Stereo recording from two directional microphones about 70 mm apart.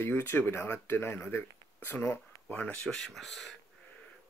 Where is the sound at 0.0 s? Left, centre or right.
Left.